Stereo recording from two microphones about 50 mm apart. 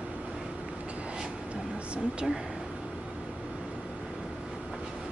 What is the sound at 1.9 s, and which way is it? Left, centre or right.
Speech, centre.